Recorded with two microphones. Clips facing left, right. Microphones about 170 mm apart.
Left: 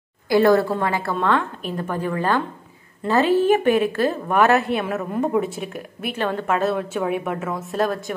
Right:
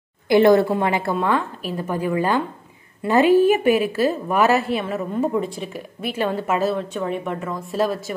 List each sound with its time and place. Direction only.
0.3 s a woman's voice: 20° right (ahead or behind)
1.1 s a woman's voice: 10° right (ahead or behind)